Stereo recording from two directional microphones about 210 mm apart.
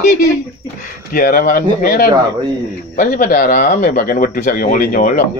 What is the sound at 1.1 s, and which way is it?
Speech, 40° left (ahead or behind).